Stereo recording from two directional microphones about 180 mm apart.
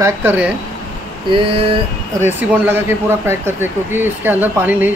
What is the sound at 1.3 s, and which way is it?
Speech, 30° right (ahead or behind).